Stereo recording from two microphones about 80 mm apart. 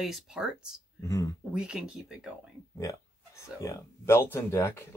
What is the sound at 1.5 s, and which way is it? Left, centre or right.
Speech, centre.